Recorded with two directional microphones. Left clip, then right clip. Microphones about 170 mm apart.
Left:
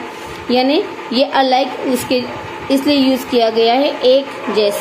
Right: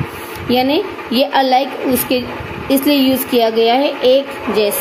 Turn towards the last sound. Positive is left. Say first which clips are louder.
# even
turn(degrees=-15)  # may be behind; listen again after turning